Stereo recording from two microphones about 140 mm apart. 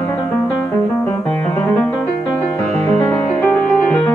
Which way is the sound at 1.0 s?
15° left (ahead or behind).